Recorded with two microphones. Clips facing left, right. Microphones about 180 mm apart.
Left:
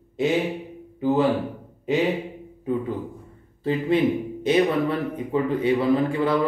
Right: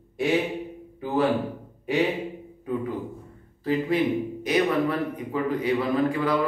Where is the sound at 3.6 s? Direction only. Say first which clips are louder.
Left 2 dB; 25° left (ahead or behind).